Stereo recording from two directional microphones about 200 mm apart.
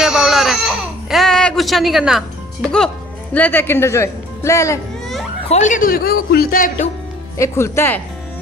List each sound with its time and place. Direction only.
0.0 s baby cry: 5° right (ahead or behind)
3.3 s speech: 10° left (ahead or behind)
5.5 s speech: 40° left (ahead or behind)
7.3 s speech: 15° left (ahead or behind)